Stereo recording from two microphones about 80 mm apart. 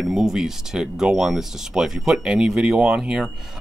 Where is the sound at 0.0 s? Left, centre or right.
Centre.